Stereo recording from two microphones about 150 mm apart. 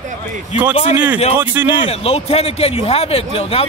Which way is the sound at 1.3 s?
10° right (ahead or behind).